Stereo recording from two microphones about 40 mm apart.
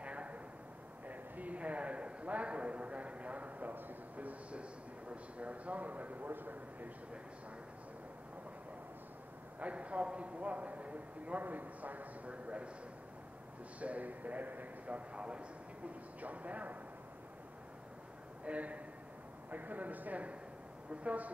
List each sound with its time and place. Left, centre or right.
0.0 s a sound: right
5.1 s a man's voice: right
9.6 s a man's voice: right
11.4 s a man's voice: right
13.7 s a man's voice: right
14.9 s a man's voice: right
16.2 s a man's voice: right
18.4 s a man's voice: right